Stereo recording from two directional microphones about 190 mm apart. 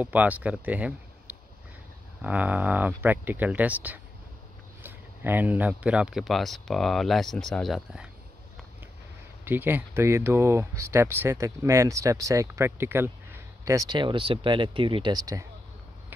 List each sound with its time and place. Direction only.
0.0 s speech: 10° right (ahead or behind)
9.4 s speech: 10° right (ahead or behind)